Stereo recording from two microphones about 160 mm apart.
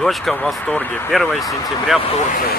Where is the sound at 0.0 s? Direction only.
Centre (ahead or behind).